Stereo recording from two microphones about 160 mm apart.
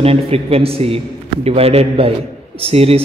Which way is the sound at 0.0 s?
35° right (ahead or behind).